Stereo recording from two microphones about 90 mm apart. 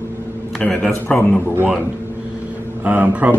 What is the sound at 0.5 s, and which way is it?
Speech, 10° left (ahead or behind).